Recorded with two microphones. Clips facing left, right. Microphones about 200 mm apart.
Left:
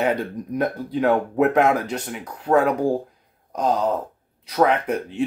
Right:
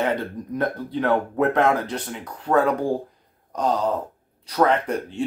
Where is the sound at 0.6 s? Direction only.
10° left (ahead or behind).